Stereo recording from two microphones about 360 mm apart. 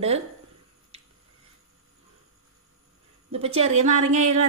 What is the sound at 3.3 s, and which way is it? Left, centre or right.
A woman's voice, centre.